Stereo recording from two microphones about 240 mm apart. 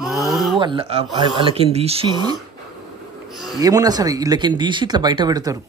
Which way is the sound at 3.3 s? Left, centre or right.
Centre.